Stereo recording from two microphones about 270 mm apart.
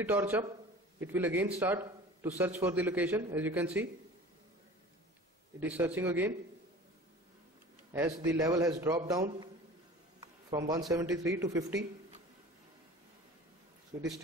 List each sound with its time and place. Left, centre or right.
0.0 s a man's voice: centre
5.6 s a man's voice: centre
7.9 s a man's voice: centre
10.5 s a man's voice: centre